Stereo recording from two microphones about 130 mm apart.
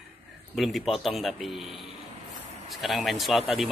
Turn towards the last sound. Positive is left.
turn(degrees=0)  # may be behind; listen again after turning